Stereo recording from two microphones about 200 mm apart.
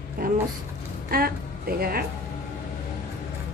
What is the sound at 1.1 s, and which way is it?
Speech, 50° right (ahead or behind).